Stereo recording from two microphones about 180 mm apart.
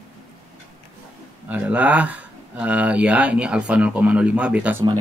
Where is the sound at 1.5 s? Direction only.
10° right (ahead or behind).